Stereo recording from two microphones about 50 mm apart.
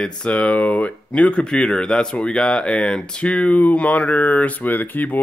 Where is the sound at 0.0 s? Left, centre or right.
Left.